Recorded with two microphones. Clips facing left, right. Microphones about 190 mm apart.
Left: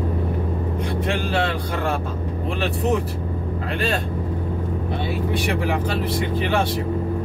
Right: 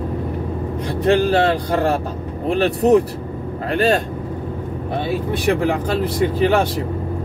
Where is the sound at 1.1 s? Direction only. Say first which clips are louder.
Right 10 dB; 40° right (ahead or behind).